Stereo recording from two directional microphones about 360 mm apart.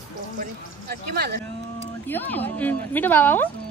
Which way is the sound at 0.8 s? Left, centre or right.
Right.